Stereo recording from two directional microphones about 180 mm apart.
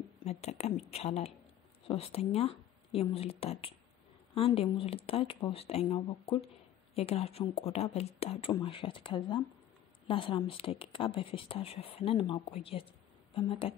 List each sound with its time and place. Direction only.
0.2 s a woman's voice: 35° left (ahead or behind)